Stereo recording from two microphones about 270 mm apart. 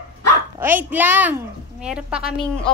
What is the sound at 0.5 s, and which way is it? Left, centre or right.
A woman's voice, centre.